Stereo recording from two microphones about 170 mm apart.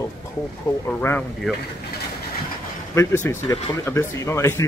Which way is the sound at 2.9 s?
15° left (ahead or behind).